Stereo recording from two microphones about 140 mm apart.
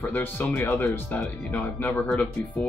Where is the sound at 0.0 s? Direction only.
15° left (ahead or behind).